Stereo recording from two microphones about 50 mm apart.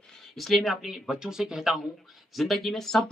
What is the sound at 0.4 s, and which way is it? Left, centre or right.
Speech, centre.